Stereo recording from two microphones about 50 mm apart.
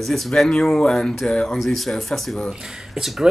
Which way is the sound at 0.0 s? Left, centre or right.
Centre.